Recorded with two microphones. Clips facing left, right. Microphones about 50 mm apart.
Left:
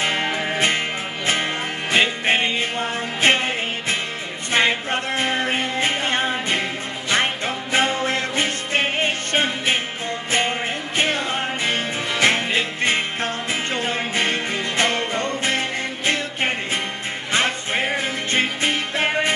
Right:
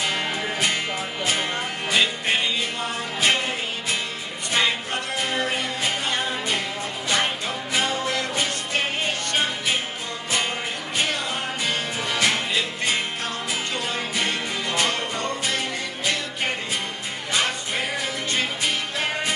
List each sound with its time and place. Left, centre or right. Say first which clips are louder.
0.0 s music: left 3 dB; left
12.1 s music: left 4 dB; left
17.3 s music: left 3 dB; left